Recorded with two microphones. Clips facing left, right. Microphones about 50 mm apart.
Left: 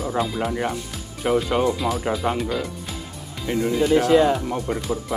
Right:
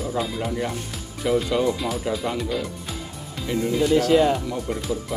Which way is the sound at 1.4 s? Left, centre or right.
Left.